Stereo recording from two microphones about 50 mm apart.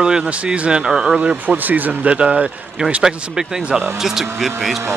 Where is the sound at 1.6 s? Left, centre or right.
Right.